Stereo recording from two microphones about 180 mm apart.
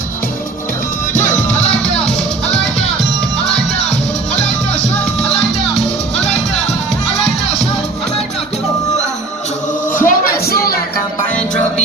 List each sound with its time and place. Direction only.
5.2 s music: 5° left (ahead or behind)
9.9 s music: 50° left (ahead or behind)